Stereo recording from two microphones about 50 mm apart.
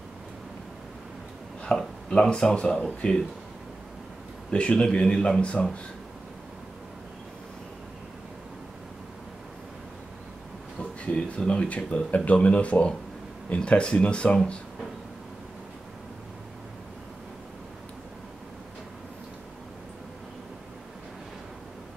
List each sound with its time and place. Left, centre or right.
1.6 s speech: centre
4.5 s speech: left
10.8 s speech: left